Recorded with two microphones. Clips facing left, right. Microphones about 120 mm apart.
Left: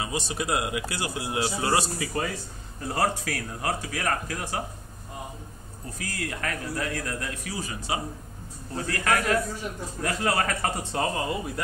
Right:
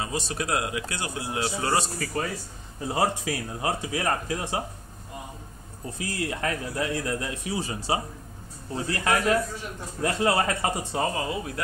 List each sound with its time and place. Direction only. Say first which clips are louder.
0.0 s a man's voice: even; centre (ahead or behind)
2.9 s a man's voice: right 1 dB; 20° right (ahead or behind)
5.9 s a man's voice: right 3 dB; 25° right (ahead or behind)
10.8 s a man's voice: even; 5° right (ahead or behind)